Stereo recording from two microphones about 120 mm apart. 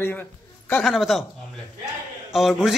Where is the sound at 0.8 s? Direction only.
Centre (ahead or behind).